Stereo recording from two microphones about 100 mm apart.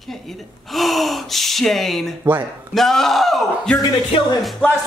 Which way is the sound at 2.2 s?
20° right (ahead or behind).